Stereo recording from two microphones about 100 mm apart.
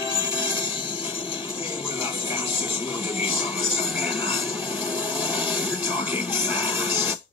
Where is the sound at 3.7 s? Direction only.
70° left (ahead or behind).